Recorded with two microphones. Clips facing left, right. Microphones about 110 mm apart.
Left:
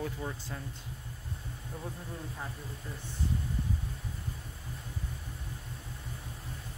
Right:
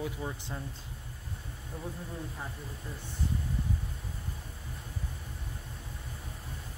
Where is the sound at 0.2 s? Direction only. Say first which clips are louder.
Right 1 dB; 15° right (ahead or behind).